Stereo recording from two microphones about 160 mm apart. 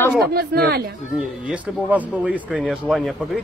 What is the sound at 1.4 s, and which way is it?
Speech, 10° right (ahead or behind).